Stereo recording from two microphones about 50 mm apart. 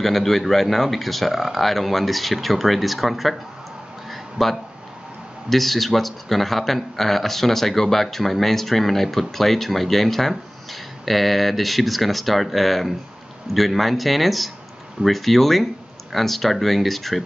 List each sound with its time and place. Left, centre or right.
0.0 s a man's voice: centre
4.1 s a sound: centre
5.5 s a man's voice: centre